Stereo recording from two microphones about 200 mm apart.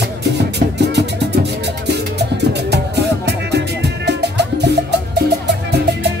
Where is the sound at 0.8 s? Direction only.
60° right (ahead or behind).